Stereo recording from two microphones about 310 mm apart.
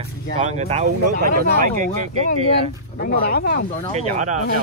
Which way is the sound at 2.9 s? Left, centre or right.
Left.